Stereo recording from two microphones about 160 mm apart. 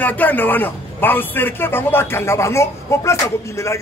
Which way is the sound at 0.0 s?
10° left (ahead or behind).